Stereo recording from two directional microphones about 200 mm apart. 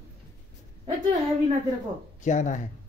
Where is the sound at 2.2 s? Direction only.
40° left (ahead or behind).